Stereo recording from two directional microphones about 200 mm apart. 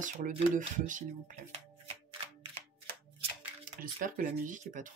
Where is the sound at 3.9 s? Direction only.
40° right (ahead or behind).